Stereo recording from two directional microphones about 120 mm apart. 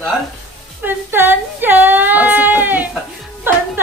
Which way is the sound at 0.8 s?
15° right (ahead or behind).